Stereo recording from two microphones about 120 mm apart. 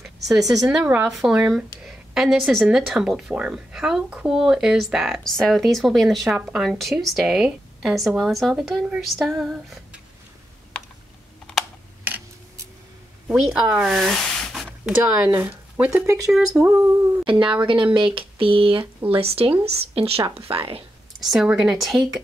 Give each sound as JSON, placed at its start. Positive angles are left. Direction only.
{"t": 0.0, "sound": "speech", "side_deg": 0}
{"t": 0.8, "sound": "speech", "side_deg": -15}
{"t": 13.3, "sound": "speech", "side_deg": -10}
{"t": 15.2, "sound": "speech", "side_deg": -15}
{"t": 16.6, "sound": "speech", "side_deg": -25}
{"t": 17.2, "sound": "a sound", "side_deg": -45}
{"t": 19.6, "sound": "speech", "side_deg": -55}
{"t": 20.4, "sound": "a sound", "side_deg": -50}
{"t": 21.2, "sound": "a woman's voice", "side_deg": 0}